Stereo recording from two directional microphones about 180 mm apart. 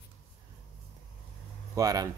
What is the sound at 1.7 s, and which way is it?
Speech, 20° right (ahead or behind).